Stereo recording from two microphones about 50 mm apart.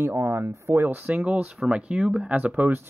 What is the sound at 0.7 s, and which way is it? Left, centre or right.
Speech, right.